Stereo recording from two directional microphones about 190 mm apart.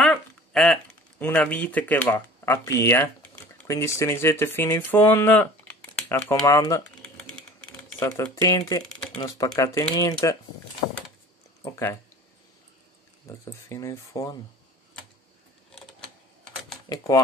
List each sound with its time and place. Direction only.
0.0 s a sound: centre (ahead or behind)
1.2 s speech: 10° left (ahead or behind)
8.0 s speech: 15° left (ahead or behind)
11.6 s speech: 15° left (ahead or behind)
13.3 s speech: 15° left (ahead or behind)
16.9 s speech: 20° left (ahead or behind)